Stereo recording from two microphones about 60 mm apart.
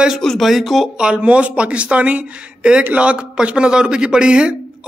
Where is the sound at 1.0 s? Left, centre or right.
Centre.